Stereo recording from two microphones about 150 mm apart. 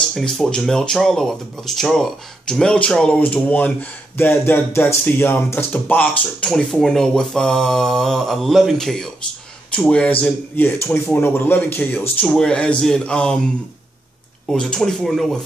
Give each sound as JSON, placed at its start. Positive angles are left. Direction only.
{"t": 0.1, "sound": "speech", "side_deg": 5}
{"t": 14.5, "sound": "speech", "side_deg": 5}